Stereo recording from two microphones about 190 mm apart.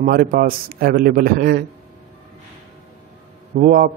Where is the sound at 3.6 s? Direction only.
50° right (ahead or behind).